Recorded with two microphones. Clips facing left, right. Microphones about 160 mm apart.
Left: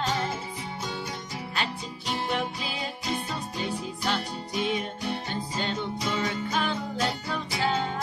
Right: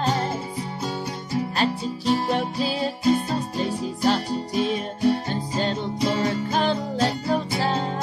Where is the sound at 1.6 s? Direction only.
35° right (ahead or behind).